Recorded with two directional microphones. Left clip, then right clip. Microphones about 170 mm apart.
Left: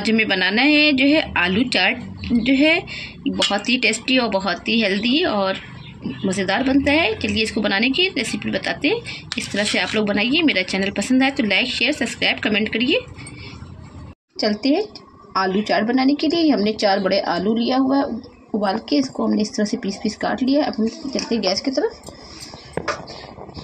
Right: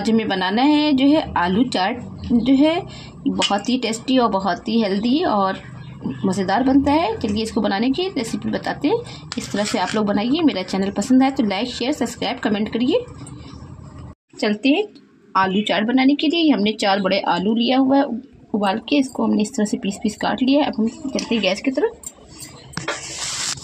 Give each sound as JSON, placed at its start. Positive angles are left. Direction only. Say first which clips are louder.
{"t": 0.0, "sound": "a woman's voice", "louder": "left 2 dB", "side_deg": -30}
{"t": 14.4, "sound": "speech", "louder": "right 1 dB", "side_deg": -55}